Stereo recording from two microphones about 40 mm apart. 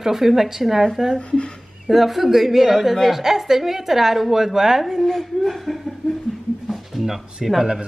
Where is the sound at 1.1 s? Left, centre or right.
Left.